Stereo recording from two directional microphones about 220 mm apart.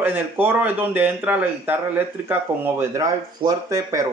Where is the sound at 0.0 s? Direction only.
10° right (ahead or behind).